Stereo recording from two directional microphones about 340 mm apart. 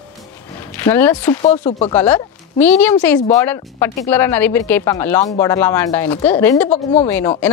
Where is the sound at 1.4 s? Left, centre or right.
Centre.